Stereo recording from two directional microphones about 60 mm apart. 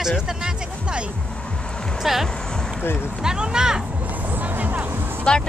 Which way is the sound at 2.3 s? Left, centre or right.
Centre.